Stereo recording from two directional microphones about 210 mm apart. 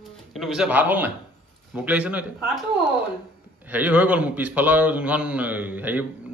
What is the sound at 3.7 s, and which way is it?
A man's voice, 5° right (ahead or behind).